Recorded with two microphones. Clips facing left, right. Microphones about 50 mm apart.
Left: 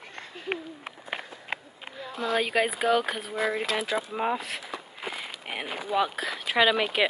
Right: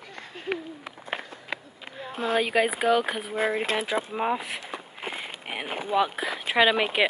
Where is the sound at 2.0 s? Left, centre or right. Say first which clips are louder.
Right 2 dB; right.